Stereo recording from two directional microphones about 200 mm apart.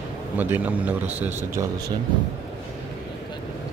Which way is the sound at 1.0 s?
35° right (ahead or behind).